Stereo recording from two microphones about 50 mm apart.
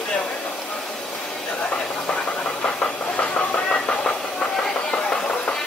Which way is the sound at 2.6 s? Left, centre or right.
Left.